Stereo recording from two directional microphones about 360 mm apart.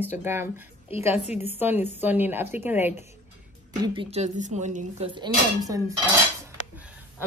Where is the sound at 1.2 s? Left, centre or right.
Centre.